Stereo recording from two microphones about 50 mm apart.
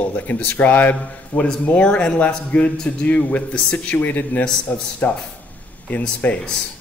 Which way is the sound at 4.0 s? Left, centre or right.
Left.